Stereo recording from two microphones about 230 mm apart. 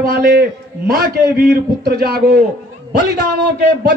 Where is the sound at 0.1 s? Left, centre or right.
Right.